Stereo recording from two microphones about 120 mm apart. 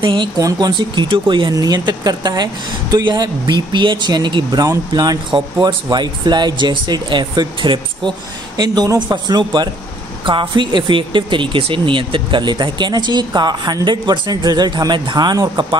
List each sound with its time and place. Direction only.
0.0 s speech: 45° right (ahead or behind)
0.4 s speech: 30° right (ahead or behind)